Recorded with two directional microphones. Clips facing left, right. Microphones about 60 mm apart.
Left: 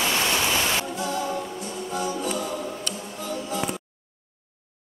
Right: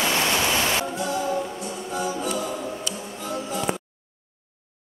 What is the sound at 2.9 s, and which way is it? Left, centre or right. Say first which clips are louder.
Music: right 1 dB; centre.